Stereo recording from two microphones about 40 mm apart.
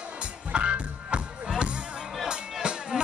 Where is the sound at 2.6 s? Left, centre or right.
Right.